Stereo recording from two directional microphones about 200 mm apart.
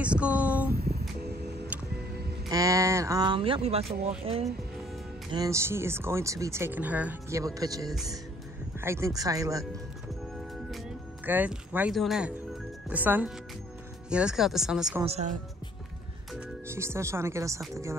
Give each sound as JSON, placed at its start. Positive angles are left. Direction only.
{"t": 0.0, "sound": "a sound", "side_deg": -5}
{"t": 0.7, "sound": "music", "side_deg": -50}
{"t": 2.5, "sound": "speech", "side_deg": -15}
{"t": 5.3, "sound": "speech", "side_deg": -15}
{"t": 11.2, "sound": "speech", "side_deg": -10}
{"t": 15.0, "sound": "speech", "side_deg": -35}
{"t": 16.3, "sound": "speech", "side_deg": -10}